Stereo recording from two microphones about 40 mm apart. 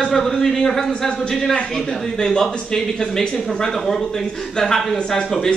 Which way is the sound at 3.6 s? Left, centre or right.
Centre.